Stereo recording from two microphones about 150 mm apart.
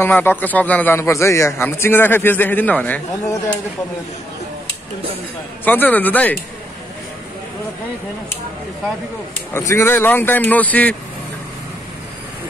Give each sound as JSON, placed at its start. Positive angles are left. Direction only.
{"t": 0.0, "sound": "a man's voice", "side_deg": 15}
{"t": 5.7, "sound": "a man's voice", "side_deg": 10}
{"t": 9.5, "sound": "a man's voice", "side_deg": 20}